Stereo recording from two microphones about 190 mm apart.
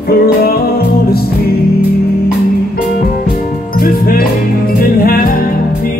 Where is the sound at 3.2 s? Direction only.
50° left (ahead or behind).